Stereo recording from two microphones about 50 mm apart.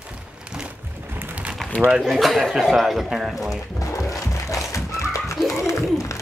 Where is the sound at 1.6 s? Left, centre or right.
Centre.